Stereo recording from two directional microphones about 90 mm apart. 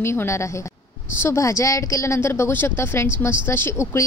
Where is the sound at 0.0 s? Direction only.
25° left (ahead or behind).